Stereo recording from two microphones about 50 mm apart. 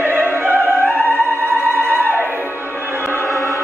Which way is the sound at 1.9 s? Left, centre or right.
Right.